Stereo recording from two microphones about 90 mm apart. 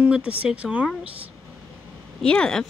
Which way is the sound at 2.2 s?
10° left (ahead or behind).